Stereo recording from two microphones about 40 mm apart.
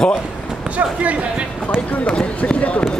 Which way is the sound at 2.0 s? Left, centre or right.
Centre.